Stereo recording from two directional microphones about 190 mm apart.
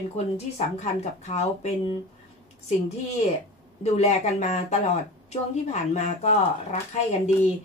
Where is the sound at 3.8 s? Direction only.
35° left (ahead or behind).